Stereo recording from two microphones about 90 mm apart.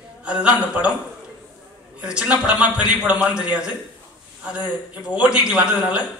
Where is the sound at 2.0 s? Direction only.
10° right (ahead or behind).